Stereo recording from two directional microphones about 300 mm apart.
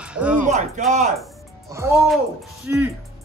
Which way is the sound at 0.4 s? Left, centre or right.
Right.